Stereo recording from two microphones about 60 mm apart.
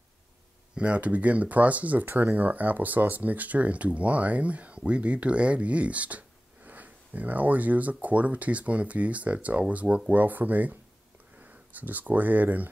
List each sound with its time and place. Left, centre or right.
0.7 s speech: right